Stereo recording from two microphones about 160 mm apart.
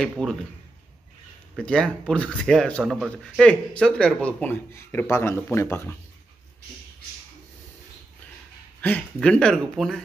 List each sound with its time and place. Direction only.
0.2 s speech: 5° left (ahead or behind)
1.6 s speech: 5° left (ahead or behind)
8.8 s speech: 10° left (ahead or behind)